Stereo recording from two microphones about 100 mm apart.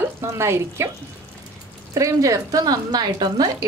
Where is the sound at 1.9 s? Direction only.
35° right (ahead or behind).